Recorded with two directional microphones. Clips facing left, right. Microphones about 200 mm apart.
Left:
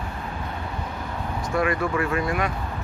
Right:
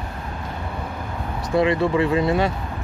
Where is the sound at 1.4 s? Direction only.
25° right (ahead or behind).